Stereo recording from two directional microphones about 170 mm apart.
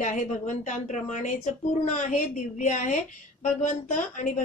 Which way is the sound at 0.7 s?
45° left (ahead or behind).